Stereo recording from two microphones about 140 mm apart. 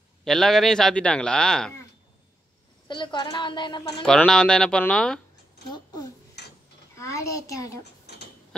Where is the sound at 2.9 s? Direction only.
35° left (ahead or behind).